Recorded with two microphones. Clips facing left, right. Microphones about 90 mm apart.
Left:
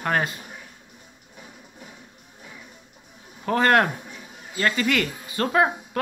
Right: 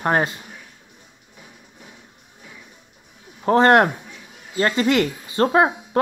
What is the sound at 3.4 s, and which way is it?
Speech, 25° right (ahead or behind).